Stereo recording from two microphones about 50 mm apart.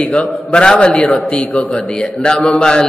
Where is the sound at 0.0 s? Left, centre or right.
Left.